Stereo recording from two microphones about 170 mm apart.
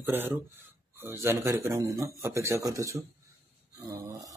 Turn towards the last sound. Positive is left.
turn(degrees=-20)  # may be behind; listen again after turning